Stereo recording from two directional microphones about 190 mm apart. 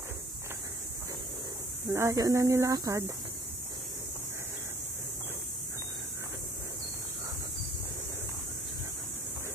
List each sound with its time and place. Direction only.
1.9 s speech: 15° right (ahead or behind)